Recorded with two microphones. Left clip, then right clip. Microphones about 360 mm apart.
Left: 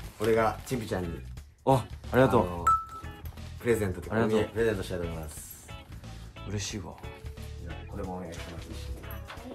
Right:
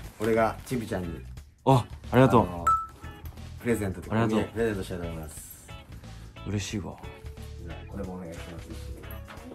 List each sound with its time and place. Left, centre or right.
0.2 s speech: centre
1.7 s speech: centre
2.4 s music: centre
3.6 s speech: centre
6.5 s speech: centre
7.6 s speech: centre
9.0 s music: centre